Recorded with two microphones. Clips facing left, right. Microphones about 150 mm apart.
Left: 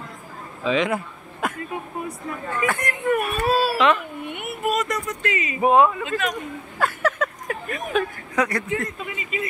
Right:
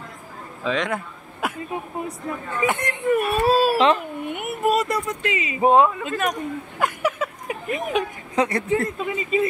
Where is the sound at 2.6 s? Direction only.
25° right (ahead or behind).